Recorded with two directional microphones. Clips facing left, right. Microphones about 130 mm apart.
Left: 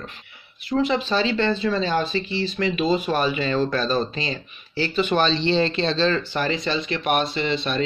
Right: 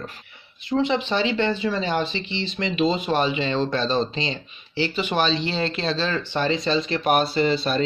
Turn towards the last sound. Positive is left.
turn(degrees=-35)  # may be behind; listen again after turning